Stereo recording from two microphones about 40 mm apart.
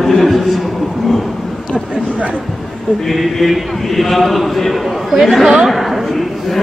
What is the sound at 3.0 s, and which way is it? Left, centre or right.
A man's voice, centre.